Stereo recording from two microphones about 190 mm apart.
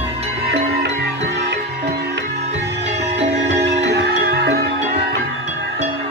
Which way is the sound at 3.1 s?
35° right (ahead or behind).